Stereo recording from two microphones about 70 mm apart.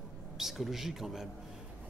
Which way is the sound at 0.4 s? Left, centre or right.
Centre.